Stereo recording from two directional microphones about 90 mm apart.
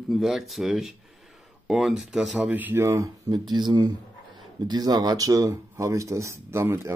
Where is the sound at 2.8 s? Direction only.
40° right (ahead or behind).